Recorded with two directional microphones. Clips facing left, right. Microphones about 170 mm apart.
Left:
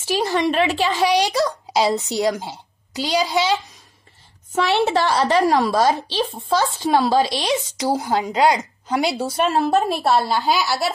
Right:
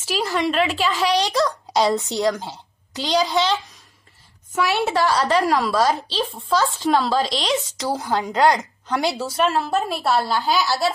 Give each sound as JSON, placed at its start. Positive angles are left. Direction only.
{"t": 0.0, "sound": "speech", "side_deg": 20}
{"t": 4.7, "sound": "speech", "side_deg": 25}